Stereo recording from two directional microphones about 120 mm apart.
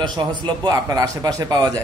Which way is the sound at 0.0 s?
40° right (ahead or behind).